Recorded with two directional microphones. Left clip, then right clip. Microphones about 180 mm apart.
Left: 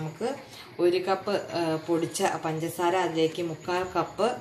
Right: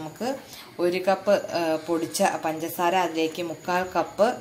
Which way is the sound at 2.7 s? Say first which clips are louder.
Right 2 dB; 25° right (ahead or behind).